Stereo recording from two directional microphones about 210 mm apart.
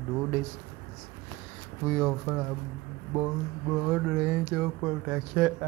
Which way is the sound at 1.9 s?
5° right (ahead or behind).